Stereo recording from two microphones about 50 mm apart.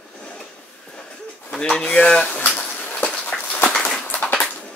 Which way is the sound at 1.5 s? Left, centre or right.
Centre.